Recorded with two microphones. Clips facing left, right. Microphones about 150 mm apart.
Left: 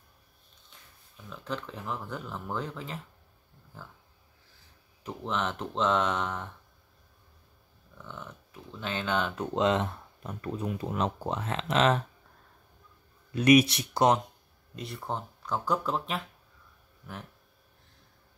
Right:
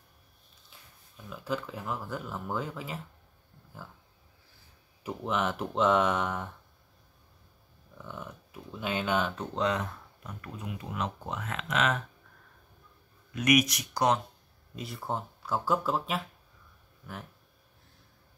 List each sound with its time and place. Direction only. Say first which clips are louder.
1.3 s speech: right 2 dB; 5° right (ahead or behind)
5.0 s speech: right 2 dB; 10° right (ahead or behind)
8.0 s speech: right 2 dB; 10° right (ahead or behind)
9.3 s speech: left 4 dB; 10° left (ahead or behind)
9.6 s speech: left 4 dB; 25° left (ahead or behind)
13.3 s speech: left 5 dB; 30° left (ahead or behind)
14.8 s speech: right 1 dB; centre (ahead or behind)